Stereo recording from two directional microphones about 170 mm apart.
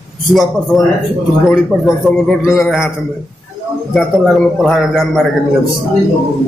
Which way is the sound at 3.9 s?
Centre (ahead or behind).